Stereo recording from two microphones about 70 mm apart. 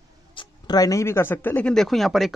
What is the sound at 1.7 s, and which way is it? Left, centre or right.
Speech, centre.